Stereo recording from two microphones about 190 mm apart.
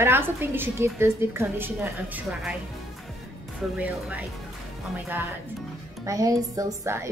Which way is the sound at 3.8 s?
10° right (ahead or behind).